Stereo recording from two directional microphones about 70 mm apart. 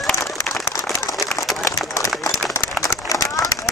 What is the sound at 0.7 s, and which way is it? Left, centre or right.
Applause, left.